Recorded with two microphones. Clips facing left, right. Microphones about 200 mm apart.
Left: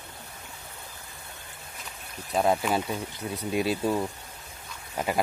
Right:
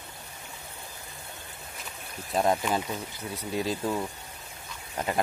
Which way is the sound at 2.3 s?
5° left (ahead or behind).